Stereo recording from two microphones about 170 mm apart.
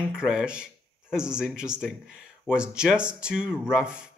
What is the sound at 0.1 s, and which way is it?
A man's voice, 5° right (ahead or behind).